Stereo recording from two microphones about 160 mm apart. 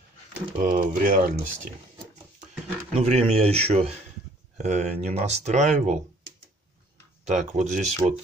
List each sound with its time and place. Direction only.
0.6 s speech: 55° right (ahead or behind)
2.9 s speech: 40° right (ahead or behind)
7.2 s speech: 45° right (ahead or behind)
8.0 s speech: 10° right (ahead or behind)